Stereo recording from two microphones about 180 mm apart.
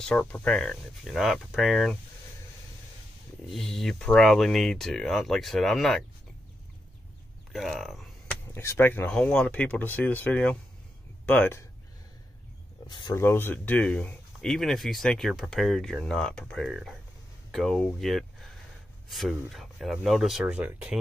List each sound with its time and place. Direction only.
0.0 s speech: 5° left (ahead or behind)
3.4 s speech: centre (ahead or behind)
7.5 s a sound: centre (ahead or behind)
8.5 s speech: 10° left (ahead or behind)
12.8 s speech: 25° left (ahead or behind)
13.2 s speech: 10° left (ahead or behind); by 21.0 s 10° right (ahead or behind)